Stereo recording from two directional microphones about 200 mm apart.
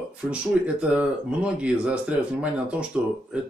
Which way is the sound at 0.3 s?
5° right (ahead or behind).